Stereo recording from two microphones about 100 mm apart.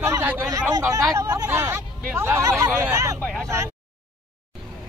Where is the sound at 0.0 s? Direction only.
25° right (ahead or behind).